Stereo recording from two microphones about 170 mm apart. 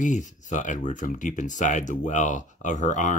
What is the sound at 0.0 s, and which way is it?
Speech, 45° left (ahead or behind).